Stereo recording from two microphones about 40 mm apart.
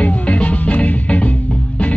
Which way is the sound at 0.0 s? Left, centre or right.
Left.